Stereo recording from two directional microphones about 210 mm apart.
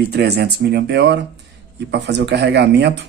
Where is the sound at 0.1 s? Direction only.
50° right (ahead or behind).